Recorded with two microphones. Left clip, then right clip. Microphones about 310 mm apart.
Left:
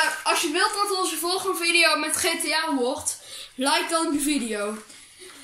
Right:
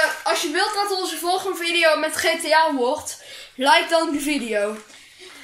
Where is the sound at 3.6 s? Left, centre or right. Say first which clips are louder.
Right 6 dB; centre.